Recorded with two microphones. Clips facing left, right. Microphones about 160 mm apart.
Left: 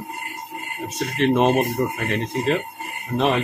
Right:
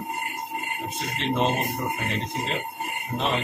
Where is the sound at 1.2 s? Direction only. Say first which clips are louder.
Left 7 dB; 60° left (ahead or behind).